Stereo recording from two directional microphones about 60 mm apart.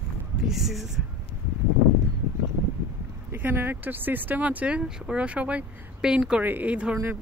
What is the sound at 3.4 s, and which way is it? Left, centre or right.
Speech, right.